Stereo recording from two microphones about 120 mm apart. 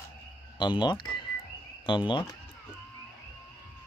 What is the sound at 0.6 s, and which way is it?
Speech, 40° left (ahead or behind).